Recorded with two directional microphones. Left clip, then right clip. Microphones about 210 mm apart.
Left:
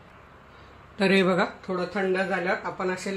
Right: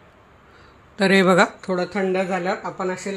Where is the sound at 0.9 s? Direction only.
20° right (ahead or behind).